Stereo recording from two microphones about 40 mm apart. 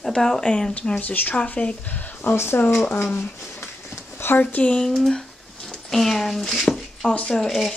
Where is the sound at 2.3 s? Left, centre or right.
Left.